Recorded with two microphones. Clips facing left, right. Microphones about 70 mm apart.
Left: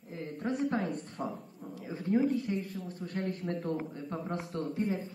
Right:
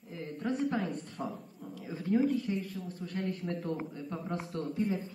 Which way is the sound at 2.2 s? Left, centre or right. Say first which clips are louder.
Even; left.